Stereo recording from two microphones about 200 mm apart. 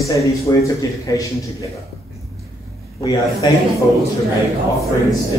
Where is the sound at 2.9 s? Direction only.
15° left (ahead or behind).